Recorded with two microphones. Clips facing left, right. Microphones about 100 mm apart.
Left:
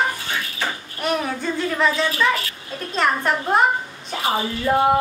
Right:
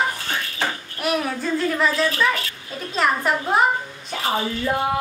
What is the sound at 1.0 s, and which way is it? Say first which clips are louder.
Speech: even; 5° right (ahead or behind).